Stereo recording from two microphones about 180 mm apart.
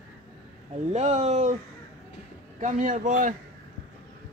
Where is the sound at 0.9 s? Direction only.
40° right (ahead or behind).